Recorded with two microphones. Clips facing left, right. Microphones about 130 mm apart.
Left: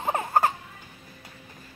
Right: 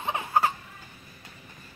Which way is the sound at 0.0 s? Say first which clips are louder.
Left 2 dB; 45° left (ahead or behind).